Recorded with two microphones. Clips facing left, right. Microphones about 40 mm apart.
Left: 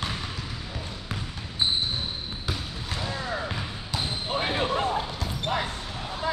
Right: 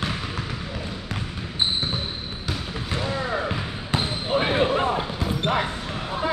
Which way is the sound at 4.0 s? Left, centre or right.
Right.